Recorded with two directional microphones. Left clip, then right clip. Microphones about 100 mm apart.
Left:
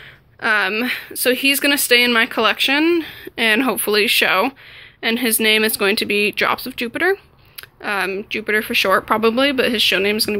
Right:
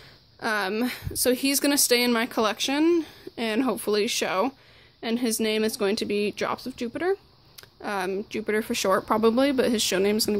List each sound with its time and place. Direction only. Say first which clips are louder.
0.4 s speech: left 9 dB; 45° right (ahead or behind); by 7.2 s 15° right (ahead or behind)
7.8 s speech: left 7 dB; 40° right (ahead or behind)